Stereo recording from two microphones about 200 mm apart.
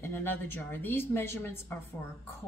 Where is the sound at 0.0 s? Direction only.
10° left (ahead or behind).